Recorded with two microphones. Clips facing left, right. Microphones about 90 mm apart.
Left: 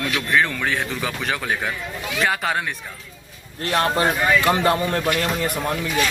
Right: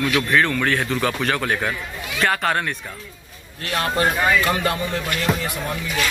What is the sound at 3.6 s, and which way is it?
Speech, 30° left (ahead or behind).